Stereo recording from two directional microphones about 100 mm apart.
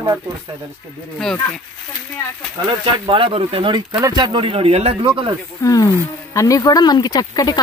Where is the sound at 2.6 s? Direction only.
60° right (ahead or behind).